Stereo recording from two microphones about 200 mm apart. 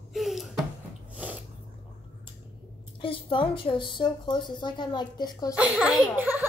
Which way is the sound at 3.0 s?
25° left (ahead or behind).